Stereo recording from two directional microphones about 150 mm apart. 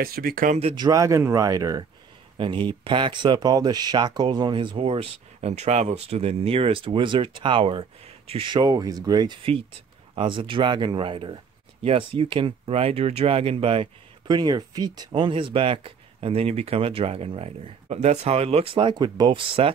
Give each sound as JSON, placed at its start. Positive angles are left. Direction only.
{"t": 0.0, "sound": "speech", "side_deg": -80}
{"t": 0.7, "sound": "speech", "side_deg": -25}